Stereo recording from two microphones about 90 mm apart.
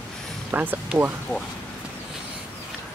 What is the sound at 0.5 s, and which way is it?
Speech, 20° right (ahead or behind).